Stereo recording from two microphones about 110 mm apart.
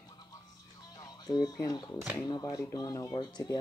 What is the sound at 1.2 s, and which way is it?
Speech, 35° left (ahead or behind).